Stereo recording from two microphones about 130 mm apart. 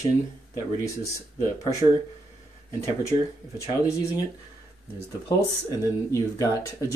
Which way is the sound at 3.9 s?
25° left (ahead or behind).